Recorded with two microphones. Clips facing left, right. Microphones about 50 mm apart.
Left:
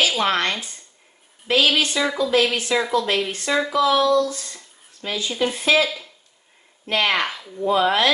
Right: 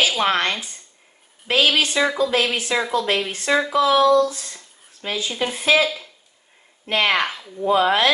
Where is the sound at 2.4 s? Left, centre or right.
Centre.